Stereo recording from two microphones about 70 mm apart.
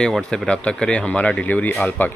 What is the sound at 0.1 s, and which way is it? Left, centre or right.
Speech, centre.